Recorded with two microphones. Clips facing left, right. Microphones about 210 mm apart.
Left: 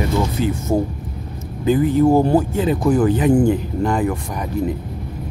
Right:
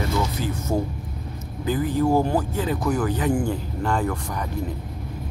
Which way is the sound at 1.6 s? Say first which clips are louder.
Left 7 dB; 20° left (ahead or behind).